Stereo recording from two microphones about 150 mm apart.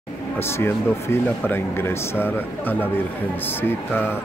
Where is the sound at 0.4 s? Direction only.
15° left (ahead or behind).